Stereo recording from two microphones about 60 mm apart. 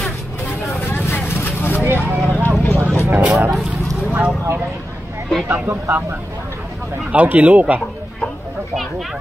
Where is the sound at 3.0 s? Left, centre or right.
Right.